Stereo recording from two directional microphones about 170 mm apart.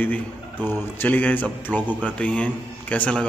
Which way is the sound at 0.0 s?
10° left (ahead or behind).